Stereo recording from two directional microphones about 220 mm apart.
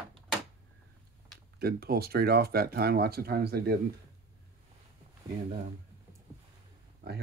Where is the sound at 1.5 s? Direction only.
45° right (ahead or behind).